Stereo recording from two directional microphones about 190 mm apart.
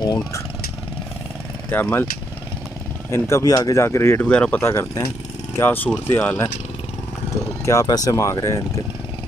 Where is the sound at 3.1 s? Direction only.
15° left (ahead or behind).